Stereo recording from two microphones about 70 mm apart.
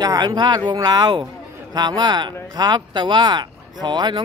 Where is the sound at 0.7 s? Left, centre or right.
Right.